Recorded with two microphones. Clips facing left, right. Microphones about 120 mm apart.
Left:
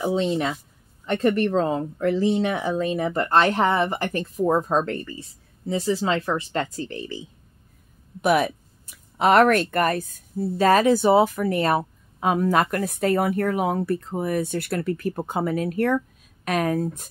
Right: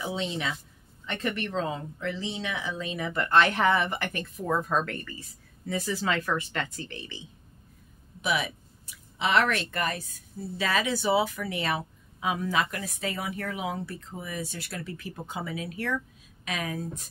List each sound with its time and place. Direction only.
0.0 s speech: 45° left (ahead or behind)
8.2 s speech: 50° left (ahead or behind)